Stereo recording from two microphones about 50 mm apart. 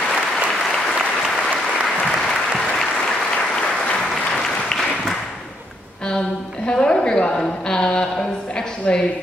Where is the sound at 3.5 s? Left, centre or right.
Centre.